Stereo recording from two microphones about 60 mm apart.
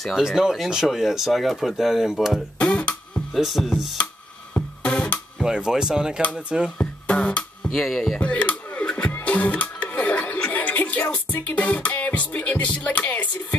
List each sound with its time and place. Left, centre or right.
0.1 s speech: centre
2.6 s music: left
3.3 s speech: centre
4.6 s music: left
5.4 s speech: centre
6.8 s guitar: left
7.7 s music: centre
8.2 s music: left